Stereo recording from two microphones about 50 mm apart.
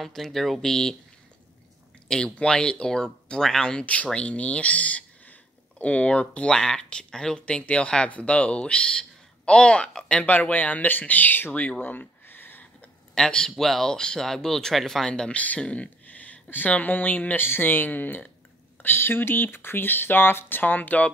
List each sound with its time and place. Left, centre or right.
0.0 s speech: centre
2.0 s a man's voice: centre
3.8 s speech: left
11.8 s a sound: left
13.1 s a man's voice: centre
15.3 s speech: left
17.4 s speech: left